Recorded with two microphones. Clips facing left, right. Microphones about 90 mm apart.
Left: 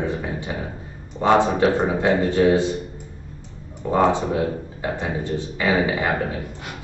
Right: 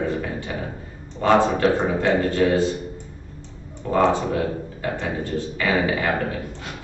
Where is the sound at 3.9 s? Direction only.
20° left (ahead or behind).